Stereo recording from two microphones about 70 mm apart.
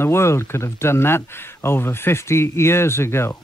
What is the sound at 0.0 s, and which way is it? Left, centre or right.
Speech, left.